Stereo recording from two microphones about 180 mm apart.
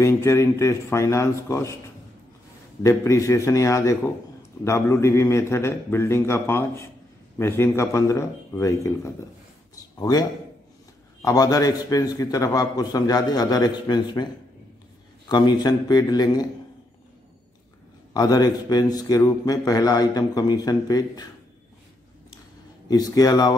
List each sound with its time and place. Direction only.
0.0 s a man's voice: 15° left (ahead or behind)
2.8 s a man's voice: 15° left (ahead or behind)
11.2 s a man's voice: 20° left (ahead or behind)
18.1 s a man's voice: 20° left (ahead or behind)
22.8 s a man's voice: 20° left (ahead or behind)